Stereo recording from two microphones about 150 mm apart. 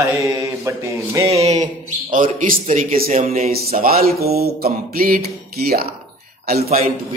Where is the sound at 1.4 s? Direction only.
50° right (ahead or behind).